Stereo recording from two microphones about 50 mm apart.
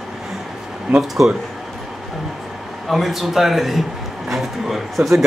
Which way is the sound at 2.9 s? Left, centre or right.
Centre.